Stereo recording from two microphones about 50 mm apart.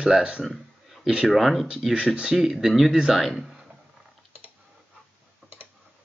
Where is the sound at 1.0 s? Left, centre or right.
Centre.